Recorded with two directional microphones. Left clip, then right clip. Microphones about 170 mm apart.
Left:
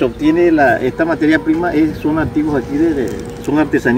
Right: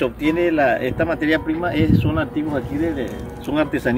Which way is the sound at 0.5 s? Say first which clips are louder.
Left 6 dB; 20° right (ahead or behind).